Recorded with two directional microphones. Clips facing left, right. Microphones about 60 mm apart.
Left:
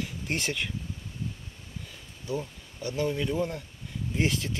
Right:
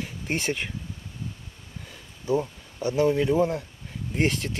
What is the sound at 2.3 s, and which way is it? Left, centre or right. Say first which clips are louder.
Speech: right 8 dB; right.